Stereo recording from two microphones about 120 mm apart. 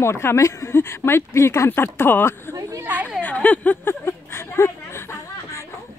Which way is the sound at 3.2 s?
10° left (ahead or behind).